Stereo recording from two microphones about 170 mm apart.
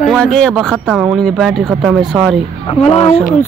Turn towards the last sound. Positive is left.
turn(degrees=35)  # may be behind; listen again after turning